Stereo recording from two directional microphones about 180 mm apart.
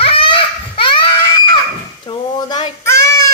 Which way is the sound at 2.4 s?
20° left (ahead or behind).